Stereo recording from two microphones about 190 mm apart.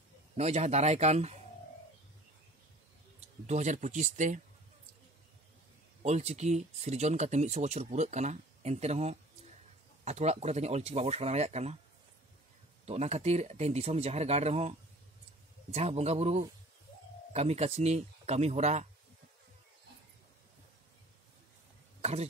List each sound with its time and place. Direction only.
0.4 s speech: 35° right (ahead or behind)
3.2 s speech: 35° right (ahead or behind)
6.0 s speech: 35° right (ahead or behind)
12.8 s speech: 35° right (ahead or behind)